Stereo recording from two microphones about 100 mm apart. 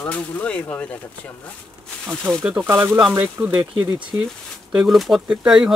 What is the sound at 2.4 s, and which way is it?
Speech, 20° right (ahead or behind).